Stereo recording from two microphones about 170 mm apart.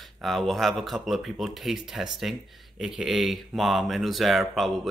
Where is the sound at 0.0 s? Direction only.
Centre (ahead or behind).